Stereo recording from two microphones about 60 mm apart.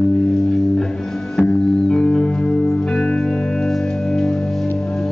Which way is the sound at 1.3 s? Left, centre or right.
Centre.